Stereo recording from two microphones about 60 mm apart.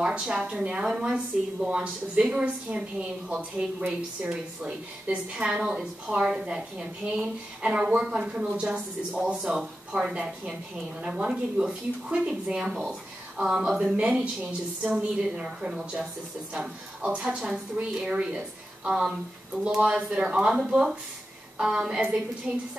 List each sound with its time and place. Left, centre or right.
0.0 s a woman's voice: centre
19.6 s a woman's voice: centre